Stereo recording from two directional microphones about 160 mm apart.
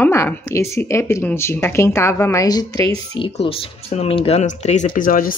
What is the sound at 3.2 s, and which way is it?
Speech, 35° left (ahead or behind).